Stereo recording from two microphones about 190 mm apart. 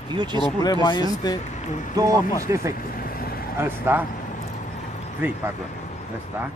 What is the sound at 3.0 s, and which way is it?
Vehicle, 50° left (ahead or behind).